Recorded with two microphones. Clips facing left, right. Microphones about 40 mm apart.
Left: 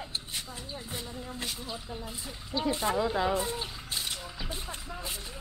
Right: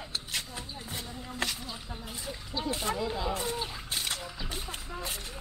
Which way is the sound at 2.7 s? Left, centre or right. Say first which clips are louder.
Left 3 dB; left.